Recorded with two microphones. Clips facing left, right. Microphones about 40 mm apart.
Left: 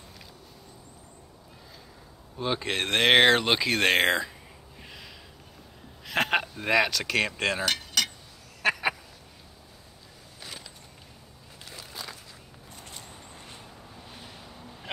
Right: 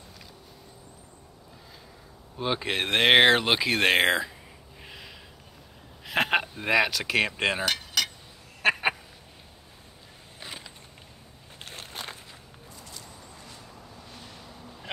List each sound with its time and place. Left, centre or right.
2.3 s speech: centre
4.8 s snort: centre
6.0 s speech: centre
7.6 s keys jangling: centre
8.6 s duck: right
11.6 s a sound: right
12.7 s vehicle: left
14.1 s boat: centre